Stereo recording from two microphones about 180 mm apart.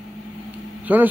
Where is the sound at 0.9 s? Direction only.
10° right (ahead or behind).